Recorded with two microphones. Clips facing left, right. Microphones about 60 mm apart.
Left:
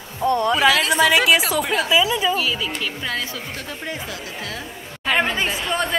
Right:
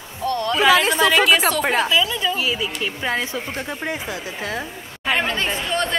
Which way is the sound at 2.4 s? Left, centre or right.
Centre.